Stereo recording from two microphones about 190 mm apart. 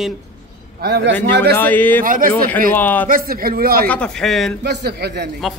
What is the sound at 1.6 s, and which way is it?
Speech, 10° left (ahead or behind).